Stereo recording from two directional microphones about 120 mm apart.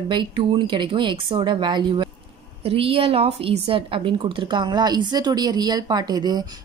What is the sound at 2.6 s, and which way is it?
A woman's voice, 50° right (ahead or behind).